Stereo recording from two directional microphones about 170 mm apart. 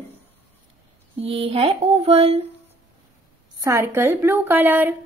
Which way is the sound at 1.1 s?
35° right (ahead or behind).